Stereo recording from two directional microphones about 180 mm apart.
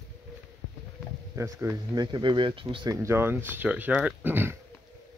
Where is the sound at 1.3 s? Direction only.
15° right (ahead or behind).